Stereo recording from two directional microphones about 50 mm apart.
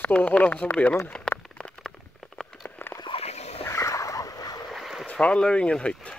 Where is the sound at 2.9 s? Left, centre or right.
Left.